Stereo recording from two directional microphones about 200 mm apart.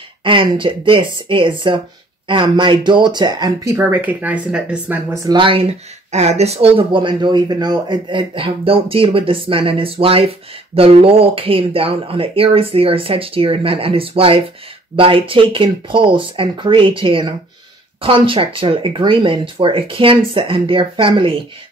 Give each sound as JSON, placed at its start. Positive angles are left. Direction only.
{"t": 0.2, "sound": "speech", "side_deg": -25}